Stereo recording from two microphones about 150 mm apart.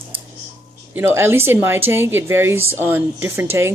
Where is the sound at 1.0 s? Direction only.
15° right (ahead or behind).